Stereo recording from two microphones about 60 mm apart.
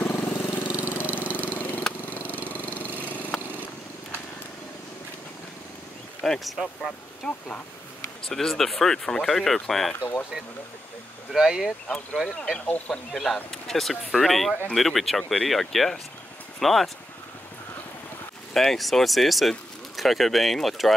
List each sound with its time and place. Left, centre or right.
0.0 s vehicle: left
0.7 s engine: right
0.9 s engine: left
2.0 s vehicle: left
2.5 s lawn mower: left
3.3 s vehicle: centre
6.2 s speech: centre
7.2 s speech: left
8.3 s speech: centre
9.9 s speech: left
11.3 s speech: centre
12.5 s speech: left
13.1 s speech: centre
18.5 s speech: centre